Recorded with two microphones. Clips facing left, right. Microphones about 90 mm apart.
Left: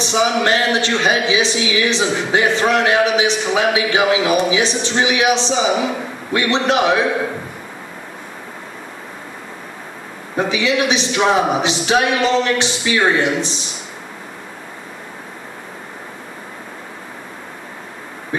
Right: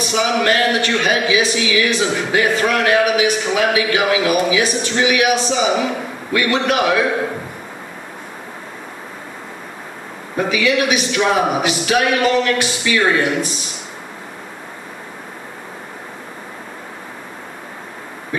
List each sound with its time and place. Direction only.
0.0 s speech: 25° left (ahead or behind)
10.3 s speech: 25° left (ahead or behind)